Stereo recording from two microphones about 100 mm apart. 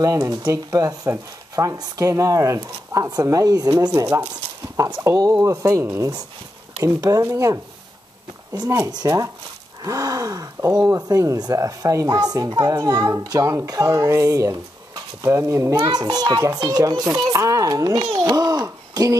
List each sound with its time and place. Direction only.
0.0 s speech: 35° right (ahead or behind)
8.6 s speech: 35° right (ahead or behind)
18.2 s a sound: 40° right (ahead or behind)